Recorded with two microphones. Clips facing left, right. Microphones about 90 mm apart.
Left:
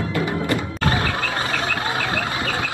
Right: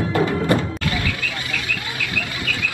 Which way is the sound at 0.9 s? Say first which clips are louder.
Left 3 dB; 35° left (ahead or behind).